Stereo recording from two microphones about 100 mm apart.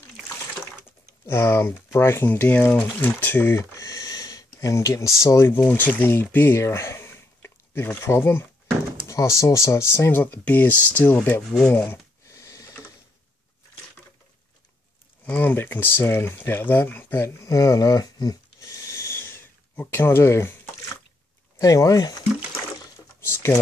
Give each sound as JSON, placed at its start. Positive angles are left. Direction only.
{"t": 1.2, "sound": "speech", "side_deg": 25}
{"t": 3.8, "sound": "speech", "side_deg": 40}
{"t": 5.7, "sound": "speech", "side_deg": 20}
{"t": 11.6, "sound": "a sound", "side_deg": 20}
{"t": 15.2, "sound": "speech", "side_deg": 20}
{"t": 21.5, "sound": "speech", "side_deg": 35}
{"t": 23.3, "sound": "speech", "side_deg": 25}